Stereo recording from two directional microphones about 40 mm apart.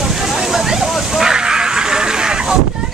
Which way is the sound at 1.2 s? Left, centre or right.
Centre.